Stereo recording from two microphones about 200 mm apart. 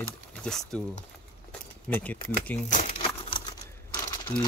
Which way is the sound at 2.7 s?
35° left (ahead or behind).